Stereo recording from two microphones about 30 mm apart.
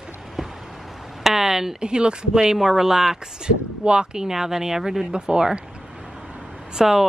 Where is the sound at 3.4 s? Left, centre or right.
Right.